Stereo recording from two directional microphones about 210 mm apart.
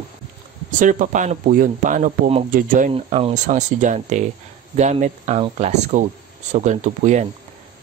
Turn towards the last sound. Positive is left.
turn(degrees=-35)  # may be behind; listen again after turning